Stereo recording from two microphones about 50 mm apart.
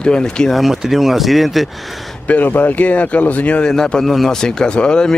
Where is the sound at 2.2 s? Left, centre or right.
Left.